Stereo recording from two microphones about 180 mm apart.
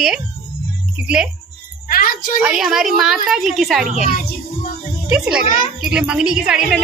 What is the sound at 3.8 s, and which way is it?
Speech, 45° right (ahead or behind).